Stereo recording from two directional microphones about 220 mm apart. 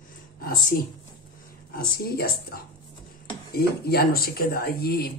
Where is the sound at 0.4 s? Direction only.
40° left (ahead or behind).